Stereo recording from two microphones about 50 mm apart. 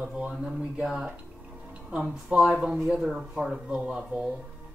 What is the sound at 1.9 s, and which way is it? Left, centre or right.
Speech, right.